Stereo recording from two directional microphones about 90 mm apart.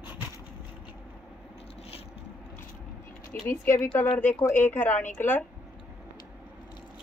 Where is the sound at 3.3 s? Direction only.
20° left (ahead or behind).